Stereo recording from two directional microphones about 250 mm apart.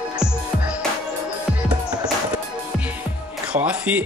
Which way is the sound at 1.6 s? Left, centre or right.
Centre.